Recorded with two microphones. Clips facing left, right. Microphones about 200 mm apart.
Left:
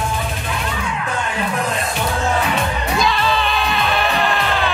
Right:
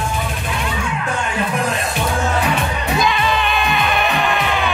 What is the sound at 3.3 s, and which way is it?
Music, 15° right (ahead or behind).